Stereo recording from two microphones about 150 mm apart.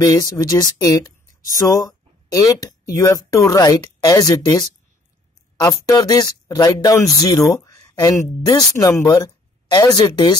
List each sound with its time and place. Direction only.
0.0 s speech: 25° left (ahead or behind)
2.3 s speech: 25° left (ahead or behind)
5.7 s speech: 25° left (ahead or behind)